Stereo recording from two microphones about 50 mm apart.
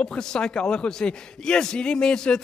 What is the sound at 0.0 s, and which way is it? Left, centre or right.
A man's voice, centre.